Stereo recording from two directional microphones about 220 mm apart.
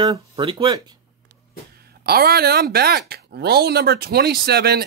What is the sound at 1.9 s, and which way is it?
Speech, 45° right (ahead or behind).